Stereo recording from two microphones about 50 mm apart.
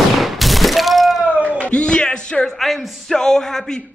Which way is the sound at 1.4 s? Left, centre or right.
Left.